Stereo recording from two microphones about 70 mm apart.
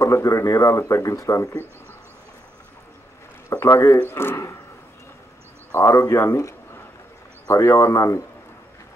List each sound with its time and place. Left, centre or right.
0.0 s a man's voice: left
3.4 s a man's voice: left
5.7 s a man's voice: left